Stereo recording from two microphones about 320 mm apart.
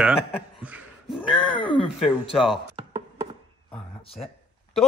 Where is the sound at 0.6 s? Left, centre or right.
Centre.